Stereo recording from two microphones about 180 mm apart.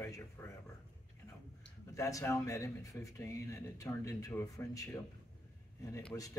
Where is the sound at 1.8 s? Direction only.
20° left (ahead or behind).